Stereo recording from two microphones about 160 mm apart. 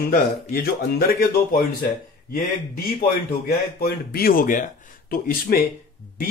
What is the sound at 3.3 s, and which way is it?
Speech, 75° left (ahead or behind).